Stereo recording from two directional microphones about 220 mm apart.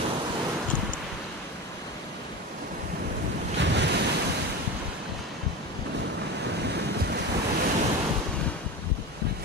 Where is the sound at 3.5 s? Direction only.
55° right (ahead or behind).